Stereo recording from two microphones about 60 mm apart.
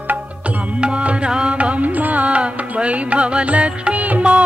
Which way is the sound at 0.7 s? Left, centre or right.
Centre.